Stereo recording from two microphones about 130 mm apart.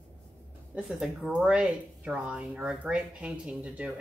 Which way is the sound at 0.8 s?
5° right (ahead or behind).